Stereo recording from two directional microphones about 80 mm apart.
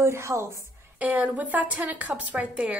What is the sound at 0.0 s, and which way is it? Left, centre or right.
Speech, right.